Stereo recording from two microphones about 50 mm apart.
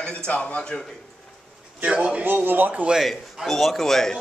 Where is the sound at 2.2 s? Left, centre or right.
Right.